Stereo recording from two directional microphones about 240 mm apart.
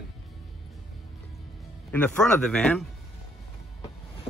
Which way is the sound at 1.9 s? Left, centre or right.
Centre.